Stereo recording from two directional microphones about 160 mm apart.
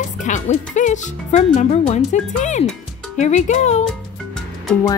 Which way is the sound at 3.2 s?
45° left (ahead or behind).